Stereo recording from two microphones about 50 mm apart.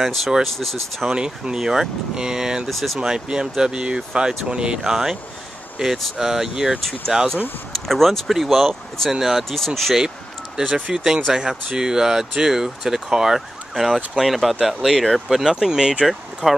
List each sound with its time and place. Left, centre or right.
0.0 s speech: centre
1.1 s speech: centre
2.7 s speech: centre
3.0 s speech: centre
7.7 s speech: centre
10.7 s speech: centre
13.8 s speech: centre